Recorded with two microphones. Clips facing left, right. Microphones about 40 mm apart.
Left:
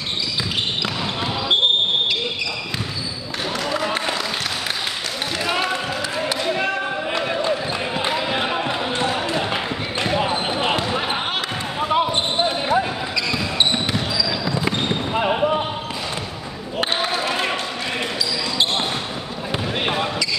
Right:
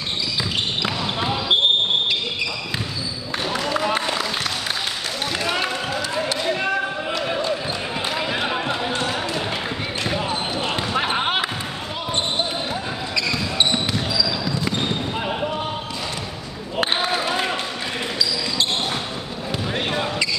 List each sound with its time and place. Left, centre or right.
0.8 s basketball bounce: centre
3.6 s a sound: centre
5.4 s basketball bounce: centre
8.0 s basketball bounce: centre
8.9 s a sound: centre
10.1 s basketball bounce: left
11.0 s basketball bounce: centre
11.9 s basketball bounce: left
13.1 s basketball bounce: centre